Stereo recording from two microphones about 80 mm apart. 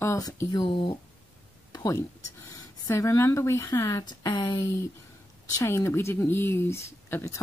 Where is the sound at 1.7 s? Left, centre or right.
Left.